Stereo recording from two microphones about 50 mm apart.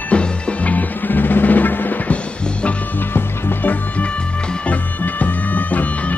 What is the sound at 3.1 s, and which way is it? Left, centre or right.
Music, left.